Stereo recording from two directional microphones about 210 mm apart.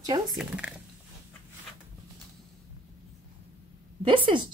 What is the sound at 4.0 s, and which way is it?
Speech, 25° right (ahead or behind).